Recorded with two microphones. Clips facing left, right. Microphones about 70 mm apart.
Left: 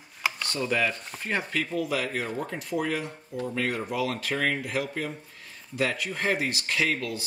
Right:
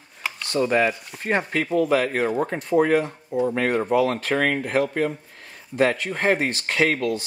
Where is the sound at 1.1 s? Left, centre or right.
Centre.